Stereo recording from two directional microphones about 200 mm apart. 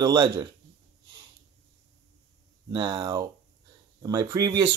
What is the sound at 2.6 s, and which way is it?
Speech, 20° right (ahead or behind).